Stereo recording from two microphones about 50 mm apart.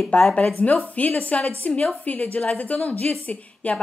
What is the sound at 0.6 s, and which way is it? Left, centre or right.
A woman's voice, left.